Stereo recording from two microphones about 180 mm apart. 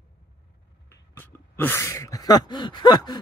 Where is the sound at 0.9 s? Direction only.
10° left (ahead or behind).